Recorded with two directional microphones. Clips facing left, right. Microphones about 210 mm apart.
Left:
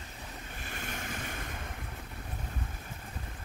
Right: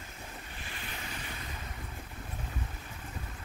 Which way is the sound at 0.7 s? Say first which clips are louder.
Left 5 dB; 45° left (ahead or behind).